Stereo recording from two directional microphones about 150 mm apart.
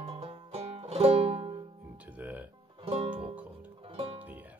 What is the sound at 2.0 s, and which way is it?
Music, 10° right (ahead or behind).